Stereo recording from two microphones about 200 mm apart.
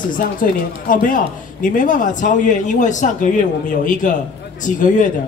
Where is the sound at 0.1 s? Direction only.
45° left (ahead or behind).